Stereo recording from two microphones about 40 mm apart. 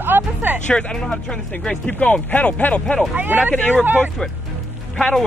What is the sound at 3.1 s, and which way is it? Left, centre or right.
Speech, right.